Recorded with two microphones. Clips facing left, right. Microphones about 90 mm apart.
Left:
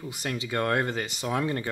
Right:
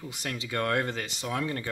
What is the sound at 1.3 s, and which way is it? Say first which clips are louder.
Speech: left 3 dB; 20° left (ahead or behind).